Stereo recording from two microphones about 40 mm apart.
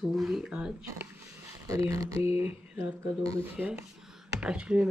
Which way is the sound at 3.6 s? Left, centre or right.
Right.